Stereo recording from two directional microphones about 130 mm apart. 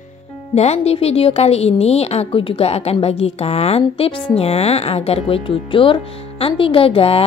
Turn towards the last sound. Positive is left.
turn(degrees=50)  # may be behind; listen again after turning